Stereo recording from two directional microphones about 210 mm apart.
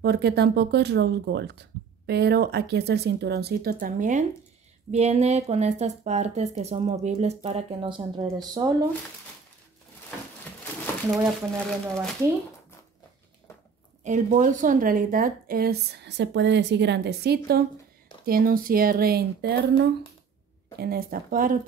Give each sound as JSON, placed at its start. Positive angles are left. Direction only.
{"t": 0.0, "sound": "a woman's voice", "side_deg": -50}
{"t": 11.1, "sound": "speech", "side_deg": 0}
{"t": 14.0, "sound": "a woman's voice", "side_deg": -35}
{"t": 20.8, "sound": "a woman's voice", "side_deg": -45}